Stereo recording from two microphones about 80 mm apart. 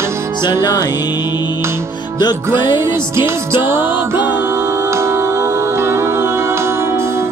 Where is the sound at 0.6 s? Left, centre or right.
Left.